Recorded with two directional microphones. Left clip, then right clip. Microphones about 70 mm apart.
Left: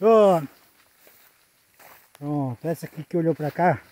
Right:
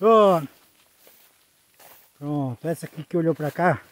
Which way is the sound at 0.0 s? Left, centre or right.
Centre.